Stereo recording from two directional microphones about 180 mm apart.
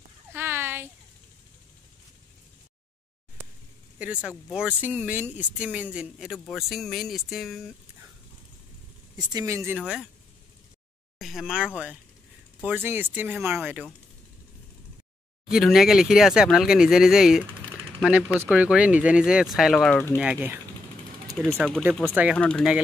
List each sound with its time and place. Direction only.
0.3 s a sound: 10° right (ahead or behind)
4.0 s speech: 5° right (ahead or behind)
9.1 s speech: 20° right (ahead or behind)
11.1 s speech: centre (ahead or behind)
15.5 s speech: centre (ahead or behind)
20.2 s speech: 10° right (ahead or behind)
22.0 s speech: 10° right (ahead or behind)
22.4 s speech: 5° left (ahead or behind)